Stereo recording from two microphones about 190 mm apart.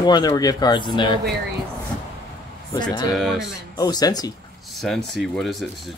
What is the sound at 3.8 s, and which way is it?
Speech, 20° left (ahead or behind).